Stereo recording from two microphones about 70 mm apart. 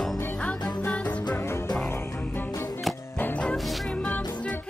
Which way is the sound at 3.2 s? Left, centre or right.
Centre.